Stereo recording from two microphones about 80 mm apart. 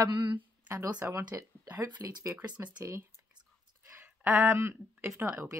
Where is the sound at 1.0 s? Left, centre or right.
Right.